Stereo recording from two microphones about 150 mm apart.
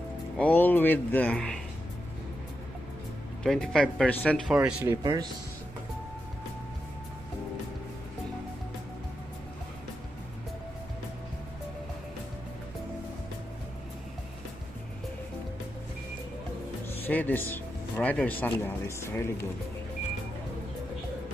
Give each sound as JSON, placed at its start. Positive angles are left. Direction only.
{"t": 0.4, "sound": "speech", "side_deg": 10}
{"t": 3.4, "sound": "speech", "side_deg": 5}
{"t": 4.5, "sound": "speech", "side_deg": -5}
{"t": 5.0, "sound": "speech", "side_deg": -30}
{"t": 17.0, "sound": "speech", "side_deg": 10}